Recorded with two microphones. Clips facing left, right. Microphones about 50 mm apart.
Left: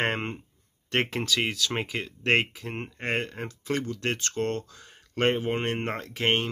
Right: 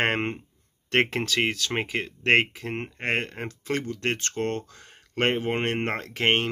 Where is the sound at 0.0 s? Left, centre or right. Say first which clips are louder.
Right 3 dB; right.